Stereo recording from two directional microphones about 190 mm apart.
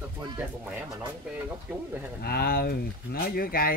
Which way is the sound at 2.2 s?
55° left (ahead or behind).